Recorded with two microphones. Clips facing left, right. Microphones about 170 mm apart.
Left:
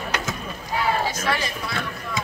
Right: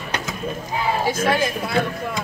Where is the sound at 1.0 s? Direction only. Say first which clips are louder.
Right 6 dB; 50° right (ahead or behind).